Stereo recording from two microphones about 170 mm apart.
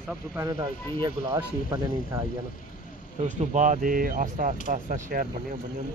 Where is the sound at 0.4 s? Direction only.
25° right (ahead or behind).